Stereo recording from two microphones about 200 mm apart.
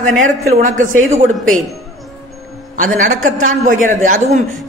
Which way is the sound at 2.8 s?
40° right (ahead or behind).